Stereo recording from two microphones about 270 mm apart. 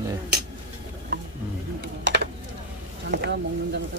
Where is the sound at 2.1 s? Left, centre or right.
Right.